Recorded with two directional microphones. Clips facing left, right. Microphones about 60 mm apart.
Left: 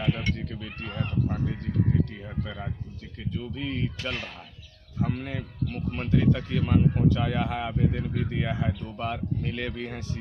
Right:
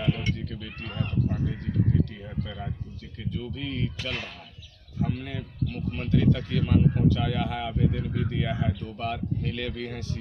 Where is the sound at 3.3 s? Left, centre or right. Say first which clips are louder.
Left 1 dB; left.